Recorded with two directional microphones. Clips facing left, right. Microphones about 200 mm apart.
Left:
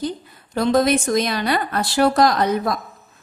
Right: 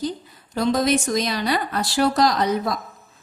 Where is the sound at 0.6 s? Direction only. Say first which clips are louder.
Left 3 dB; 55° left (ahead or behind).